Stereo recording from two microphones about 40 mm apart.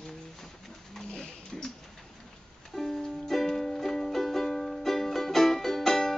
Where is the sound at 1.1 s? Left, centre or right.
Centre.